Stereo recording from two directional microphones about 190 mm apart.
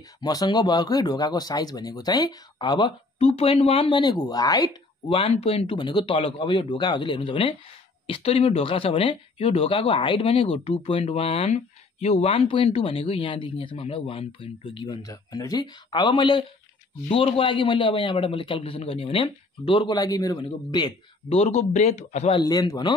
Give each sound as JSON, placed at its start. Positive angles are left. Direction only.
{"t": 0.2, "sound": "speech", "side_deg": 20}
{"t": 5.1, "sound": "speech", "side_deg": 30}
{"t": 22.4, "sound": "speech", "side_deg": 20}